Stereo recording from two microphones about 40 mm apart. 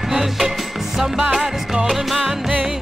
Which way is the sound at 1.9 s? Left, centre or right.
Centre.